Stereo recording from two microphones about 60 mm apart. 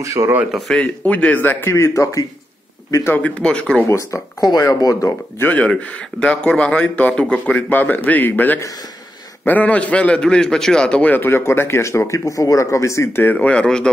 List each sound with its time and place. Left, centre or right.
0.0 s speech: right
0.7 s a man's voice: centre; by 1.7 s left
1.7 s speech: left
3.2 s a man's voice: centre
3.8 s speech: left
5.6 s a man's voice: centre
11.1 s speech: left
11.8 s speech: left
13.2 s speech: left
13.5 s a man's voice: centre